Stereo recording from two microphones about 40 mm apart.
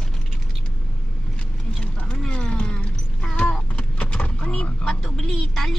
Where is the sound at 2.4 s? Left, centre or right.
Left.